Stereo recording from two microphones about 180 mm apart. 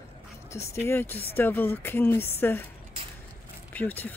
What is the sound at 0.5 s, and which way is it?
Speech, 15° left (ahead or behind).